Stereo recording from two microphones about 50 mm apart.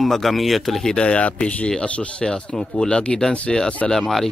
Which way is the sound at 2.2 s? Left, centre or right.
Centre.